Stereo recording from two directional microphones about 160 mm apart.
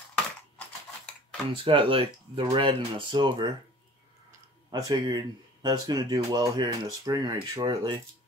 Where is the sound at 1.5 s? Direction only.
35° right (ahead or behind).